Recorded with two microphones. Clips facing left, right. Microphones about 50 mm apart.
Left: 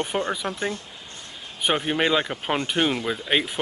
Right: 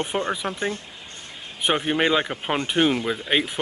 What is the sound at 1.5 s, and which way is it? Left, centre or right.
Speech, centre.